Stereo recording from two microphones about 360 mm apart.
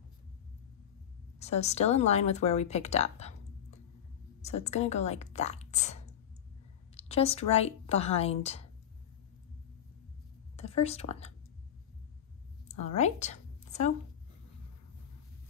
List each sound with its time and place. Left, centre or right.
1.4 s speech: centre
4.4 s speech: centre
7.0 s speech: centre
10.8 s speech: centre
12.6 s a sound: centre